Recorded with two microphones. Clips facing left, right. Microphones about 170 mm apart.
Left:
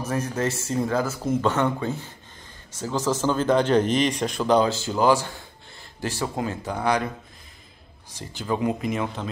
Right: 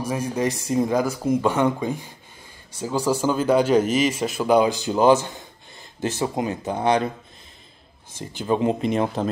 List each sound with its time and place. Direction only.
0.0 s speech: 10° right (ahead or behind)
8.3 s speech: 20° right (ahead or behind); by 9.3 s 35° right (ahead or behind)